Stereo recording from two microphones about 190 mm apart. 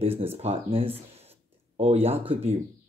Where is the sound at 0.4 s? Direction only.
35° right (ahead or behind).